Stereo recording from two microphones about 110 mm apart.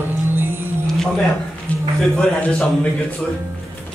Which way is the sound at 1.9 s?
5° left (ahead or behind).